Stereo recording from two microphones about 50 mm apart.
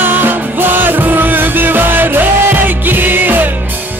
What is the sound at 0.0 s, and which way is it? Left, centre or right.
Music, right.